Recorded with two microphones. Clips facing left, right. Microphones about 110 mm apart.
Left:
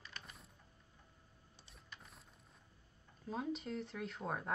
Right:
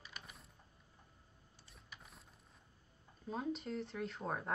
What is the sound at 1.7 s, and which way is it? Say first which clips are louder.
Printer: even; centre (ahead or behind).